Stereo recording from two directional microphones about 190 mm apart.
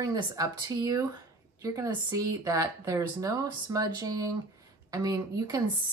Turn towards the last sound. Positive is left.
turn(degrees=-20)  # may be behind; listen again after turning